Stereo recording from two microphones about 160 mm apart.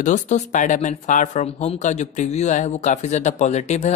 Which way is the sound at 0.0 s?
50° left (ahead or behind).